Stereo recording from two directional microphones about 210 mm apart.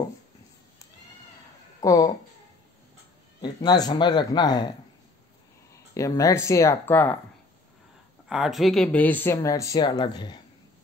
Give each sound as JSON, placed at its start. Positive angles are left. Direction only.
{"t": 1.8, "sound": "speech", "side_deg": 15}
{"t": 3.3, "sound": "speech", "side_deg": 20}
{"t": 5.9, "sound": "speech", "side_deg": 15}
{"t": 8.3, "sound": "speech", "side_deg": 0}